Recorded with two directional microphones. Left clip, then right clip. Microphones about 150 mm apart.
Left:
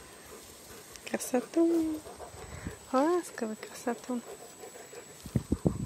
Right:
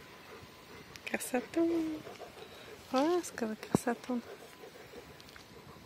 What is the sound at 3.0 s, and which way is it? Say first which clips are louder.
Speech: left 3 dB; 10° left (ahead or behind).